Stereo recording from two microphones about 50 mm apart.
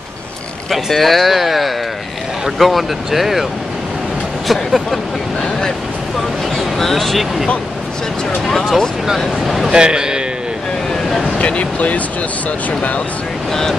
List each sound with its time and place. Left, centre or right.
0.7 s speech: centre
4.5 s speech: centre
6.5 s speech: centre
8.5 s speech: centre
9.7 s a man's voice: centre
10.9 s vehicle: centre
11.3 s speech: left
13.5 s speech: centre